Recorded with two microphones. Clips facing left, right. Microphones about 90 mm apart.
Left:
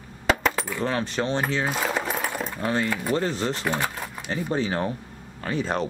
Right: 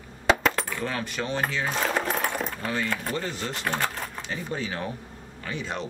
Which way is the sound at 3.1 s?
35° left (ahead or behind).